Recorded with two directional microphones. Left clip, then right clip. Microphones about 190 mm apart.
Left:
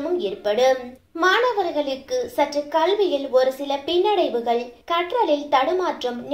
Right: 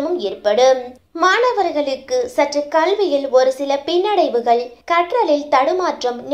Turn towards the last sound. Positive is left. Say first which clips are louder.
# right 5 dB
turn(degrees=-30)  # may be behind; listen again after turning